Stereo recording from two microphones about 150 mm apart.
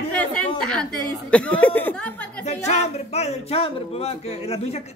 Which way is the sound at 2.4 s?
50° left (ahead or behind).